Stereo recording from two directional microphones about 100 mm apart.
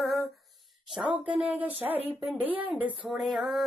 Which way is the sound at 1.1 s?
15° right (ahead or behind).